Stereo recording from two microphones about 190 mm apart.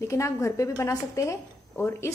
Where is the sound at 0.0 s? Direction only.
15° left (ahead or behind).